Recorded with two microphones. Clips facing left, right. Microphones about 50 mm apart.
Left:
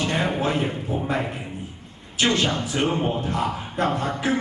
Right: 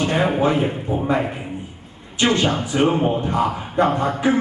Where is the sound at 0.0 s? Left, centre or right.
Centre.